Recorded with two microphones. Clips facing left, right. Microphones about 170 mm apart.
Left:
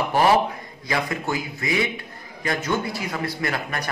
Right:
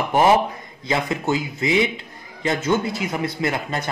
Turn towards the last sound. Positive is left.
turn(degrees=-20)  # may be behind; listen again after turning